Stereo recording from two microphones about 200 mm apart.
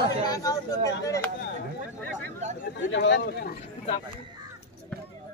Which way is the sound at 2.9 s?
60° left (ahead or behind).